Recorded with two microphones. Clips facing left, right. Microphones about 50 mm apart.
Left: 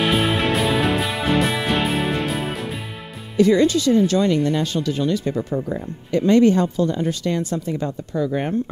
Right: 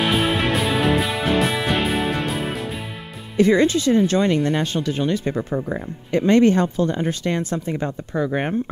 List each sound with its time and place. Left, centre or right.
0.0 s music: centre
3.3 s speech: right